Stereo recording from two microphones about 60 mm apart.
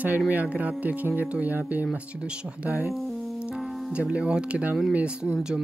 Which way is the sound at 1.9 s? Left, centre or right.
Centre.